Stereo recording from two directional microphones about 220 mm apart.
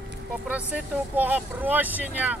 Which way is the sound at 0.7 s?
5° right (ahead or behind).